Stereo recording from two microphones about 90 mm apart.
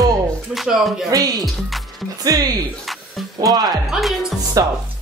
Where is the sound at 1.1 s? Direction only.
45° right (ahead or behind).